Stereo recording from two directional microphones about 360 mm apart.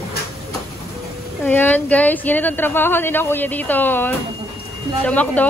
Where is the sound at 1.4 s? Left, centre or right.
Centre.